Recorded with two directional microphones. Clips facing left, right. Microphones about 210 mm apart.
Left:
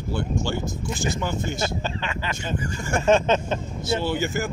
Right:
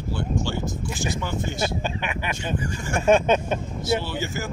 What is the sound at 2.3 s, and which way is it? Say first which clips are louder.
Speech: right 1 dB; 45° left (ahead or behind).